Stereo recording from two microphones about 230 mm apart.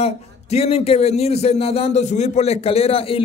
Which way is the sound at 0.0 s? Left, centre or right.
Left.